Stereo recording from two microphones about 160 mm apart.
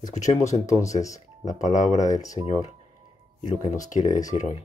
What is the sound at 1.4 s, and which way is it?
Speech, 50° left (ahead or behind).